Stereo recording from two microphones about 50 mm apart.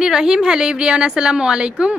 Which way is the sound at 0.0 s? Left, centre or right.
Centre.